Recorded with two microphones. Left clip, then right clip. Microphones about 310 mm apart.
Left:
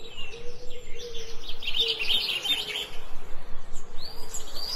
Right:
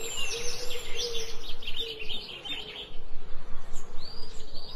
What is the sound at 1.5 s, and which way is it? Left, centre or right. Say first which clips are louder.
Bird: left 10 dB; centre.